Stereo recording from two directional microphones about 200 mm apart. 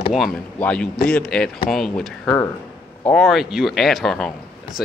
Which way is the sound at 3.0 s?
5° left (ahead or behind).